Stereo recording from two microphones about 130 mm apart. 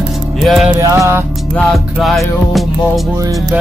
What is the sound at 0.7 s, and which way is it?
Music, 25° right (ahead or behind).